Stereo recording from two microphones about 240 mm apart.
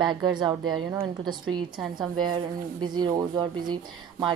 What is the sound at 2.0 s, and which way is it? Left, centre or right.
A woman's voice, centre.